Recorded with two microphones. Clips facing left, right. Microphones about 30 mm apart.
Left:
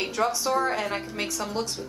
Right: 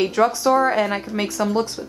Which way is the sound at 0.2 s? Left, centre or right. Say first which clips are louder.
Right 7 dB; right.